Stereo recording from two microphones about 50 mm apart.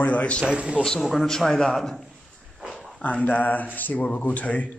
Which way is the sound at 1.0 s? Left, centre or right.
Centre.